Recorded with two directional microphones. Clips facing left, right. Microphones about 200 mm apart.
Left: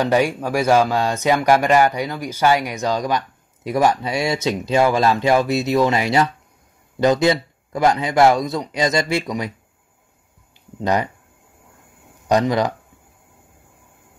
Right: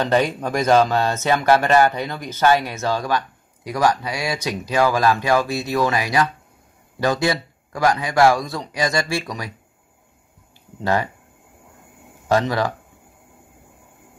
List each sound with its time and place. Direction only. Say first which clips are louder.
0.0 s speech: left 1 dB; 10° left (ahead or behind)
10.8 s speech: left 1 dB; 20° left (ahead or behind)
12.3 s speech: left 2 dB; 20° left (ahead or behind)